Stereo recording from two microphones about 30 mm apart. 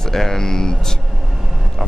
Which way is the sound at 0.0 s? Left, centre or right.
Centre.